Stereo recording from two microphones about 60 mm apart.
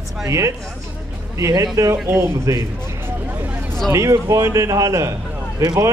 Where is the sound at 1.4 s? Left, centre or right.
Right.